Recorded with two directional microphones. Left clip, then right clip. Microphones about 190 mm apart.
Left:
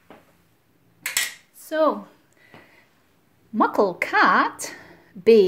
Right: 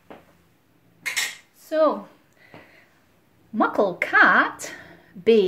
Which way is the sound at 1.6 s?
40° left (ahead or behind).